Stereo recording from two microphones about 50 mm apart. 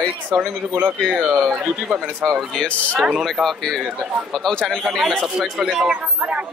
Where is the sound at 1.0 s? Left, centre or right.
Centre.